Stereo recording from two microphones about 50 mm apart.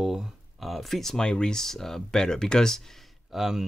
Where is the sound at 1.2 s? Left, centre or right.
Centre.